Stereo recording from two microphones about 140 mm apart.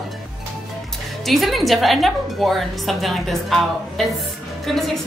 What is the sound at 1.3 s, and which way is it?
A woman's voice, centre (ahead or behind).